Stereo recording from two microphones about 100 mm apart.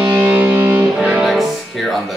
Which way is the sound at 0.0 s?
20° right (ahead or behind).